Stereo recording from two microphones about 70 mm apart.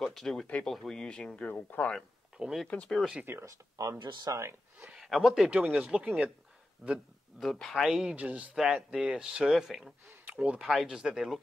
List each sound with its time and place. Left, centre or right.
0.0 s speech: centre
1.5 s speech: left
2.3 s a sound: centre
2.7 s speech: centre
3.4 s speech: right
4.0 s speech: right
4.3 s speech: right
4.7 s speech: centre
5.5 s speech: centre
7.6 s speech: centre
7.9 s speech: centre
8.3 s speech: right
8.5 s speech: centre
10.3 s speech: centre